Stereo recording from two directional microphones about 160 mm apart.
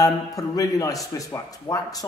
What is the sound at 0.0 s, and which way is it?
Speech, 20° left (ahead or behind).